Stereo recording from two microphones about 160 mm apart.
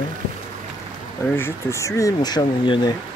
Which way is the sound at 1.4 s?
15° left (ahead or behind).